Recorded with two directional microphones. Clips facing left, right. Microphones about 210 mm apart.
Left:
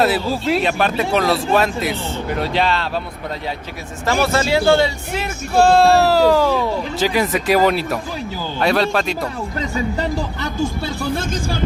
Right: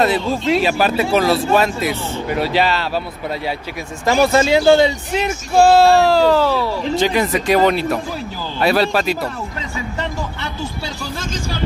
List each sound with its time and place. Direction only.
0.0 s a man's voice: 5° left (ahead or behind)
4.0 s speech: 15° right (ahead or behind)
5.7 s speech: centre (ahead or behind); by 6.7 s 15° left (ahead or behind)
7.0 s a man's voice: 5° left (ahead or behind)
9.9 s speech: 40° left (ahead or behind)
11.0 s speech: 55° left (ahead or behind)